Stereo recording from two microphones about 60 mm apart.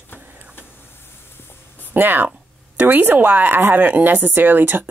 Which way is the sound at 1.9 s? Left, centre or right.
Right.